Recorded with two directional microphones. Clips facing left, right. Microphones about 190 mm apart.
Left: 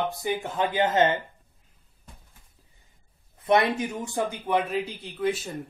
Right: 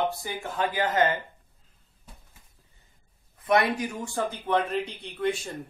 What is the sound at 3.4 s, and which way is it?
Speech, 25° left (ahead or behind).